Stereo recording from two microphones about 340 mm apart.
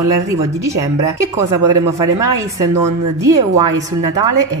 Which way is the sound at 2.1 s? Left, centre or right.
Centre.